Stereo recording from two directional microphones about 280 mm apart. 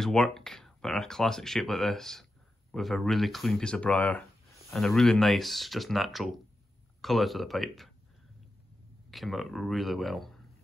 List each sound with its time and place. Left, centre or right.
0.0 s speech: centre
9.1 s speech: centre